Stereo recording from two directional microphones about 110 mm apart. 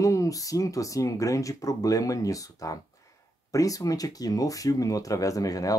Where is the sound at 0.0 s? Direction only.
30° left (ahead or behind).